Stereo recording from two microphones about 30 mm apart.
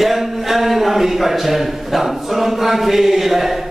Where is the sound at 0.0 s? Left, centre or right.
Centre.